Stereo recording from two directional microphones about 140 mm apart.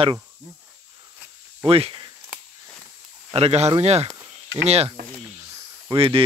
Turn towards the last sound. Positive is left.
turn(degrees=-40)  # may be behind; listen again after turning